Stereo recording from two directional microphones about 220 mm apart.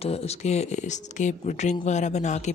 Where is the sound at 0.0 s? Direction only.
30° left (ahead or behind).